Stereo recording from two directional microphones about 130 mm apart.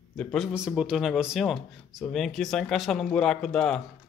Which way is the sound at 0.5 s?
5° right (ahead or behind).